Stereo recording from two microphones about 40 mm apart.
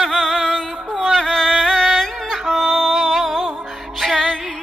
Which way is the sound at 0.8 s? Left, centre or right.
Right.